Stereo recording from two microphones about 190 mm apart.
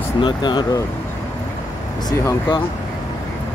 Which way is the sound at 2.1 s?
25° left (ahead or behind).